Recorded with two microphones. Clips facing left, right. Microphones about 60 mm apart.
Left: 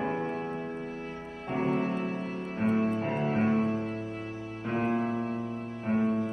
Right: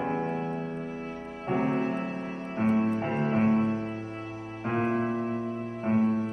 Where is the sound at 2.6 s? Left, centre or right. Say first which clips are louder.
Right 2 dB; centre.